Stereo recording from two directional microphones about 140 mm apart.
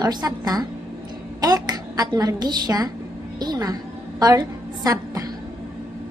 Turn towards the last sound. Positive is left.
turn(degrees=-25)  # may be behind; listen again after turning